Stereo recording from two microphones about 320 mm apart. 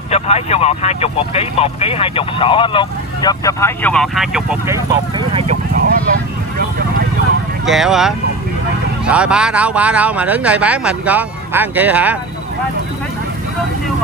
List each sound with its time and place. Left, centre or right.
0.1 s speech: centre
5.3 s a sound: right
7.6 s speech: centre